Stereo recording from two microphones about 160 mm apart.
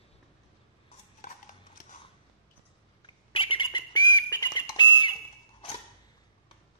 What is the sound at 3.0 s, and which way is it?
Squawk, 30° left (ahead or behind).